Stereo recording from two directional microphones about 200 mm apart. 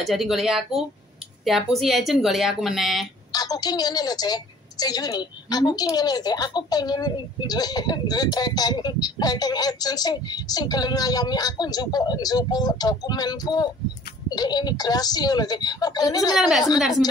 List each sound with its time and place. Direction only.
0.0 s speech: centre (ahead or behind)
3.3 s a woman's voice: 20° left (ahead or behind)
16.3 s speech: centre (ahead or behind)